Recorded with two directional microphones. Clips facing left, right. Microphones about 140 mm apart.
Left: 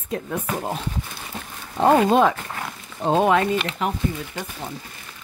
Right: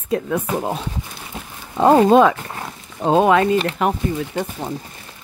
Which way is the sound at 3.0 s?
90° right.